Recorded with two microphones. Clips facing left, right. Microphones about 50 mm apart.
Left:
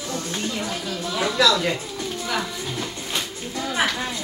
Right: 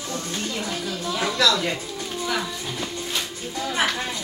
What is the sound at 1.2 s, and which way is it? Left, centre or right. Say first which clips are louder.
Speech: left 2 dB; centre.